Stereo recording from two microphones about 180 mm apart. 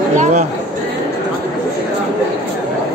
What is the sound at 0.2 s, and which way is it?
Chatter, 40° right (ahead or behind).